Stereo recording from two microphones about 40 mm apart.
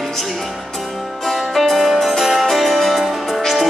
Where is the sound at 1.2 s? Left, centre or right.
Centre.